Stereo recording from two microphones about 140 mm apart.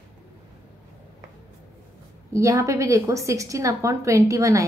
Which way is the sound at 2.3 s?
20° right (ahead or behind).